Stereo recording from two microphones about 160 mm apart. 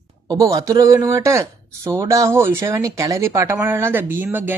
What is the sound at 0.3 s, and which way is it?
Speech, 20° right (ahead or behind).